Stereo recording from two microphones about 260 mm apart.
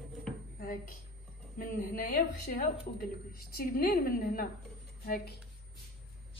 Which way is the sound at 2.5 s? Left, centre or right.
Left.